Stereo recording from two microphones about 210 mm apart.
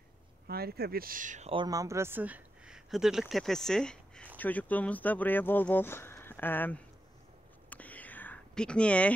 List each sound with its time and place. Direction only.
0.5 s speech: 45° right (ahead or behind)
1.5 s speech: 20° right (ahead or behind); by 6.8 s 10° left (ahead or behind)
7.7 s whispering: 5° left (ahead or behind)